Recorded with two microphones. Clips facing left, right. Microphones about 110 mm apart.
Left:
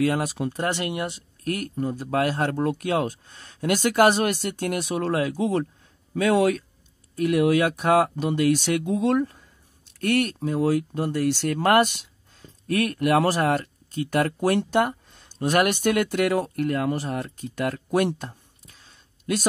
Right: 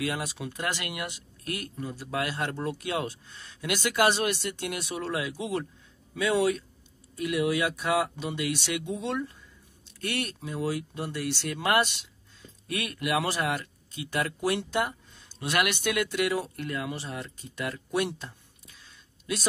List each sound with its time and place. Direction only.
0.0 s speech: 45° left (ahead or behind)
0.5 s speech: 30° left (ahead or behind)
1.4 s speech: 45° left (ahead or behind)